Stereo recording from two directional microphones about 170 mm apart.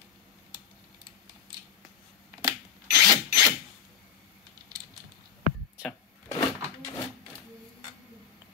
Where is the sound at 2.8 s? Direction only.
20° left (ahead or behind).